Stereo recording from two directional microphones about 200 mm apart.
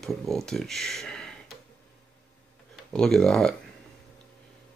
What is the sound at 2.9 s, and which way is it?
Speech, 5° left (ahead or behind).